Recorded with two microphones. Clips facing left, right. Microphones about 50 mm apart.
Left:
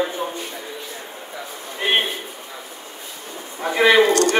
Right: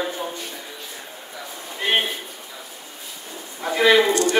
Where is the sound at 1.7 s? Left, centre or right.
Centre.